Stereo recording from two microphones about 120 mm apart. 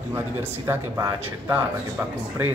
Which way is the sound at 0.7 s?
20° right (ahead or behind).